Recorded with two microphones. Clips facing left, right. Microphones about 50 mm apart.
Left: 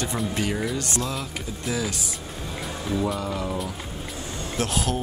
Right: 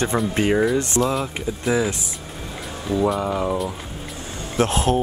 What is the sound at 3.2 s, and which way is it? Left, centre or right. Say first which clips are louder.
Speech: right 6 dB; right.